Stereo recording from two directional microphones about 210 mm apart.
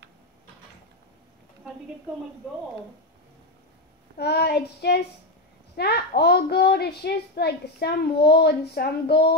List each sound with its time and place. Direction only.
4.2 s a child's voice: 50° left (ahead or behind)